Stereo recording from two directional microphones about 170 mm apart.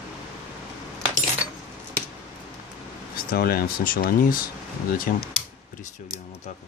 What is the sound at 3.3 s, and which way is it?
Speech, 60° left (ahead or behind).